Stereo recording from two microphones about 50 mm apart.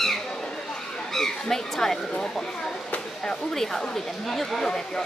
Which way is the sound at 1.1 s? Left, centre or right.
Centre.